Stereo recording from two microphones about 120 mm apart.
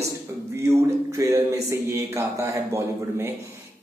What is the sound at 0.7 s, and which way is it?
Speech, 25° right (ahead or behind).